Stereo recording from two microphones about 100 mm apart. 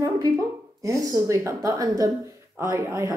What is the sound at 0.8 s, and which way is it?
A woman's voice, 30° right (ahead or behind).